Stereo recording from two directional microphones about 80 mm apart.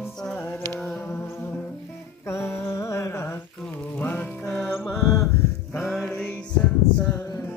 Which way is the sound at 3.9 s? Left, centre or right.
Centre.